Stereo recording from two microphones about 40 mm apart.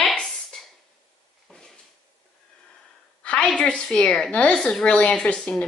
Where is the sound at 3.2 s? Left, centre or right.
Left.